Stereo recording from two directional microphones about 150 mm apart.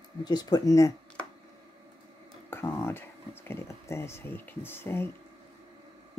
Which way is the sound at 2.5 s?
15° left (ahead or behind).